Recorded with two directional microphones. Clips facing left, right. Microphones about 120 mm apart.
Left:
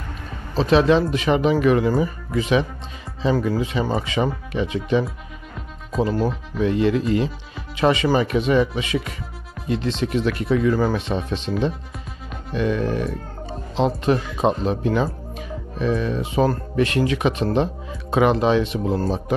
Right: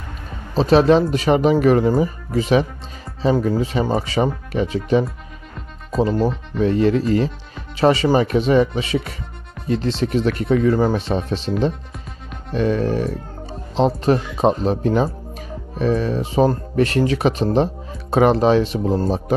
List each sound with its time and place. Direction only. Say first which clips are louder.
0.6 s speech: right 3 dB; 40° right (ahead or behind)
5.9 s speech: right 3 dB; centre (ahead or behind)
6.6 s speech: right 3 dB; 40° right (ahead or behind)
12.5 s speech: right 3 dB; 35° right (ahead or behind)